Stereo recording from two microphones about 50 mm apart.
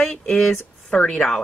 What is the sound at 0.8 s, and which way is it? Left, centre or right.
Speech, left.